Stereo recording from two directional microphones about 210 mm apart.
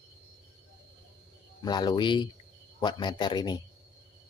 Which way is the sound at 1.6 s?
20° left (ahead or behind).